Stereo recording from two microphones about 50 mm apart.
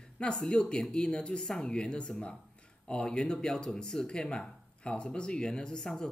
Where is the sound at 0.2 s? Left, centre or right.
Centre.